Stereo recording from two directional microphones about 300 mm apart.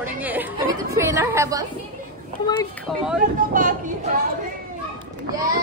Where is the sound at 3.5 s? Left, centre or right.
Right.